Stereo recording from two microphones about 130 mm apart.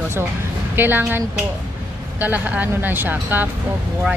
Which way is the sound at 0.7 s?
15° right (ahead or behind).